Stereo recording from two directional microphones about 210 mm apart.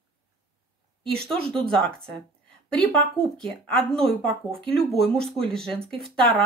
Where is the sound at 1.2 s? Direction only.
25° right (ahead or behind).